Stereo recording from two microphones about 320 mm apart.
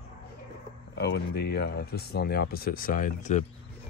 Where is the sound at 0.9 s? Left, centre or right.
Left.